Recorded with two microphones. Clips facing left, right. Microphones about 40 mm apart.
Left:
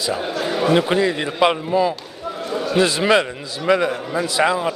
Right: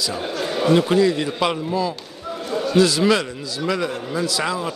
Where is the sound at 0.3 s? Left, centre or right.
Centre.